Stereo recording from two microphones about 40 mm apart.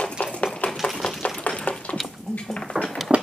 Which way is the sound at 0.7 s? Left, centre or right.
Centre.